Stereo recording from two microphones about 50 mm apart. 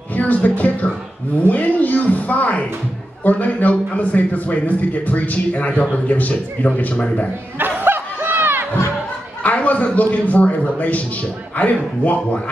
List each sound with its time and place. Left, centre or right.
0.1 s a woman's voice: left
7.5 s snicker: right
9.4 s a man's voice: left